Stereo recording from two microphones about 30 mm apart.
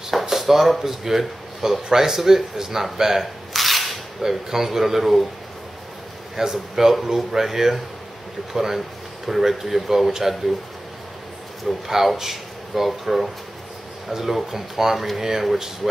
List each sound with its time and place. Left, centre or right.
0.2 s speech: centre
3.5 s cap gun: centre
4.2 s speech: centre
6.3 s speech: centre
8.7 s speech: centre
11.7 s a man's voice: centre